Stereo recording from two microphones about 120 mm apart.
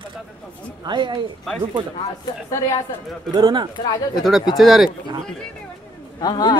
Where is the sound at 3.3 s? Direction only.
35° right (ahead or behind).